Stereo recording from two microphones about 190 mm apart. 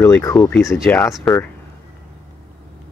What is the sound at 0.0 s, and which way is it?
Speech, 15° left (ahead or behind).